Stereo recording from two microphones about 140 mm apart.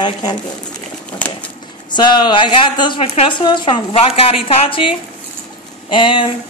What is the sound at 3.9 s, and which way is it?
A woman's voice, 45° left (ahead or behind).